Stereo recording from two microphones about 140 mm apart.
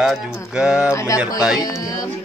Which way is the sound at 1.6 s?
25° left (ahead or behind).